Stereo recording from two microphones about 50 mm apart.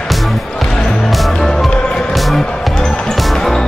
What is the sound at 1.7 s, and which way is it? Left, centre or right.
Music, centre.